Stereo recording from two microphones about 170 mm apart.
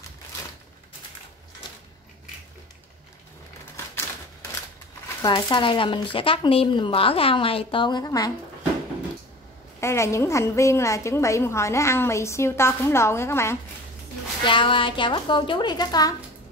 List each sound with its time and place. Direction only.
3.7 s a sound: 15° left (ahead or behind)
5.2 s speech: 25° left (ahead or behind)
9.8 s a woman's voice: 15° left (ahead or behind)
14.4 s speech: 30° left (ahead or behind)